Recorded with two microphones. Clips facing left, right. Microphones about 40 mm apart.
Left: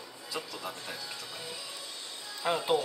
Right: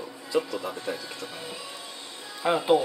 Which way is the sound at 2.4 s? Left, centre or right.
Centre.